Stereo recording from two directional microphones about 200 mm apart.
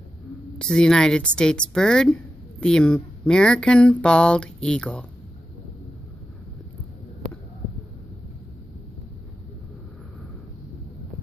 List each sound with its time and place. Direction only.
0.6 s speech: 5° left (ahead or behind)